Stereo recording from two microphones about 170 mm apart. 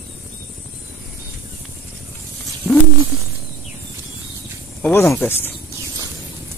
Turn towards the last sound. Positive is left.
turn(degrees=10)  # may be behind; listen again after turning